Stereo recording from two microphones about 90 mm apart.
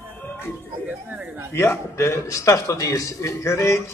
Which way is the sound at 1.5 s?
25° left (ahead or behind).